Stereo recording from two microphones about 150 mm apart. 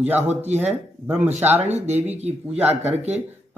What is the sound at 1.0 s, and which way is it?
Speech, 15° right (ahead or behind).